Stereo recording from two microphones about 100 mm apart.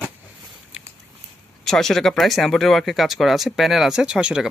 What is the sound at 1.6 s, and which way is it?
Speech, 5° left (ahead or behind).